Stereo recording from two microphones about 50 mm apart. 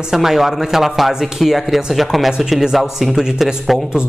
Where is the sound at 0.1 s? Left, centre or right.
Centre.